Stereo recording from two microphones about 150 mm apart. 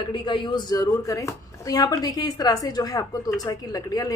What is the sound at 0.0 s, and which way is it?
A woman's voice, 35° left (ahead or behind).